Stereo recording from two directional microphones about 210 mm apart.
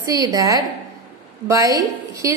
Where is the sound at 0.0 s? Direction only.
15° right (ahead or behind).